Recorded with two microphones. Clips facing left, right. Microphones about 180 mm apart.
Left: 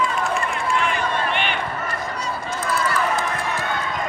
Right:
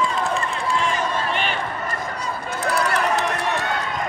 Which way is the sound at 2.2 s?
60° right (ahead or behind).